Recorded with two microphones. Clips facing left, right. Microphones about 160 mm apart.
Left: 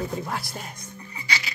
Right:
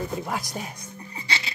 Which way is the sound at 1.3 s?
25° right (ahead or behind).